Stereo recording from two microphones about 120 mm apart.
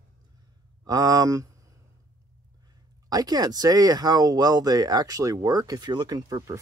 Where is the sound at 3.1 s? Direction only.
30° right (ahead or behind).